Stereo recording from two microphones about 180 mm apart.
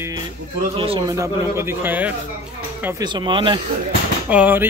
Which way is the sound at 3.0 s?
25° right (ahead or behind).